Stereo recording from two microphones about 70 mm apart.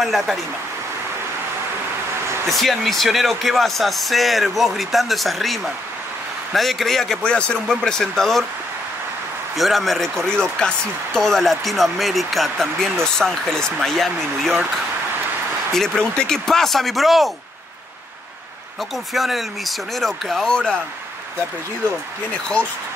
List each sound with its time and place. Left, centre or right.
0.0 s speech: centre
2.5 s speech: centre
9.6 s speech: centre
15.7 s speech: centre
19.1 s speech: centre
22.3 s speech: centre